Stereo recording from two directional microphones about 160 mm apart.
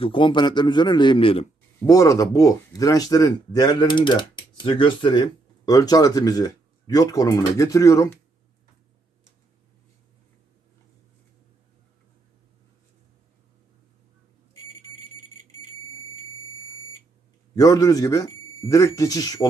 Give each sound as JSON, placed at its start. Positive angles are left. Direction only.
{"t": 0.0, "sound": "speech", "side_deg": 30}
{"t": 1.9, "sound": "speech", "side_deg": 20}
{"t": 17.6, "sound": "speech", "side_deg": 25}